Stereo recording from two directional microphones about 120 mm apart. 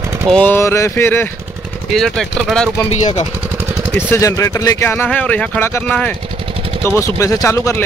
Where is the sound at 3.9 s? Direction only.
25° left (ahead or behind).